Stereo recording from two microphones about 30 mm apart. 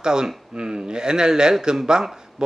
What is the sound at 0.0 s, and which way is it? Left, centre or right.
Speech, right.